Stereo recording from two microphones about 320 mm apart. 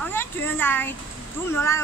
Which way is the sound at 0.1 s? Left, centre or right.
Centre.